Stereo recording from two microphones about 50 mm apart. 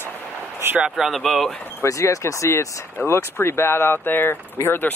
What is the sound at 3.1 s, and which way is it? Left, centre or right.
Speech, left.